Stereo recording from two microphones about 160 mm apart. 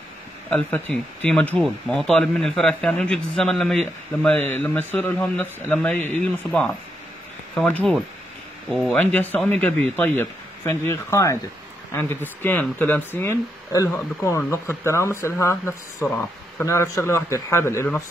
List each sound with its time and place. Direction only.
0.5 s speech: 10° left (ahead or behind)
8.9 s speech: 10° left (ahead or behind)
16.6 s speech: 20° left (ahead or behind)